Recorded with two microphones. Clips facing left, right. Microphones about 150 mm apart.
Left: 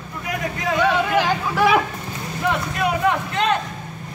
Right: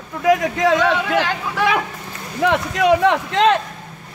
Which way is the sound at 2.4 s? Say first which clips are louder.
Right 6 dB; 90° right.